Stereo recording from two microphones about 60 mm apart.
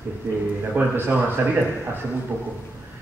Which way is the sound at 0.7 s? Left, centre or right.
Right.